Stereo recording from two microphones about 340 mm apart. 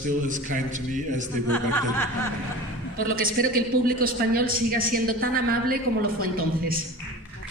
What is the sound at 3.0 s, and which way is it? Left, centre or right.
A woman's voice, right.